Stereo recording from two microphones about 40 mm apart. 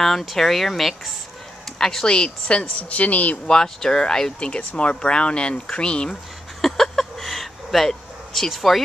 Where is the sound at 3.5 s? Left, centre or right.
Centre.